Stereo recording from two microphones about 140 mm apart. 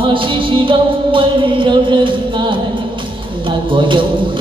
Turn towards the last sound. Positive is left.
turn(degrees=-35)  # may be behind; listen again after turning